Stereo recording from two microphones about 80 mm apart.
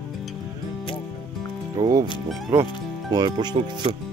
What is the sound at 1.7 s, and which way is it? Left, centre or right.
Speech, right.